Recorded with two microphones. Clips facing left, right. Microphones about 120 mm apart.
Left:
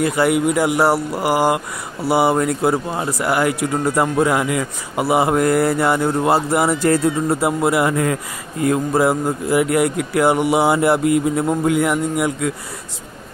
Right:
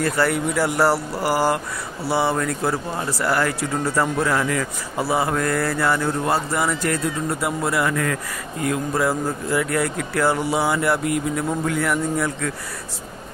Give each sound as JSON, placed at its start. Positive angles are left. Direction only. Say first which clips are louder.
{"t": 0.0, "sound": "speech", "louder": "left 4 dB", "side_deg": 15}